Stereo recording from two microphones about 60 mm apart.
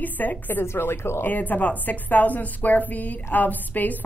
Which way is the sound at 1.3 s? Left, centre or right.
Left.